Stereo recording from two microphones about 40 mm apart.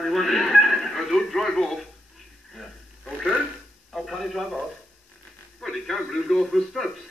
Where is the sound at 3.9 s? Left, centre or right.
Centre.